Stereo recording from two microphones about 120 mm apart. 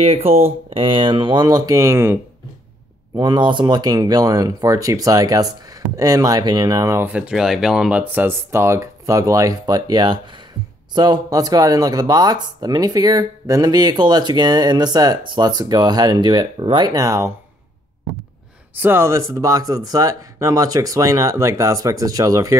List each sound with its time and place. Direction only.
0.0 s speech: 55° right (ahead or behind); by 2.1 s 20° right (ahead or behind)
3.2 s speech: 40° right (ahead or behind)
7.1 s speech: 10° right (ahead or behind); by 17.3 s 30° right (ahead or behind)
18.8 s speech: 20° right (ahead or behind)